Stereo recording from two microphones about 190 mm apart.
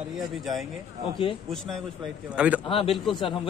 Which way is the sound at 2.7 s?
30° left (ahead or behind).